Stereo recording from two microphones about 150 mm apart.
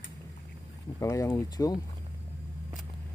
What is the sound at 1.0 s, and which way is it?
Speech, 20° left (ahead or behind).